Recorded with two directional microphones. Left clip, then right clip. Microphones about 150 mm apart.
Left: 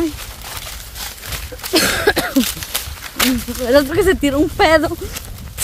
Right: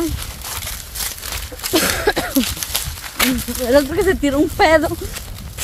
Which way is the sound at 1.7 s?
15° left (ahead or behind).